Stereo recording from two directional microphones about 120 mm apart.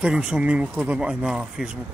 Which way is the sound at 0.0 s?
5° right (ahead or behind).